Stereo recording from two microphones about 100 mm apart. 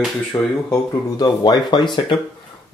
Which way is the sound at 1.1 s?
45° left (ahead or behind).